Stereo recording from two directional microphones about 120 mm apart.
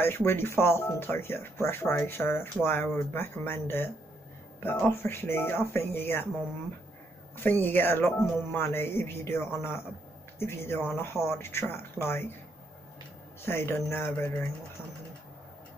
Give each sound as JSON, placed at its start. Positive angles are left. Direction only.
{"t": 0.0, "sound": "speech", "side_deg": 20}
{"t": 7.3, "sound": "speech", "side_deg": 15}
{"t": 13.5, "sound": "speech", "side_deg": 20}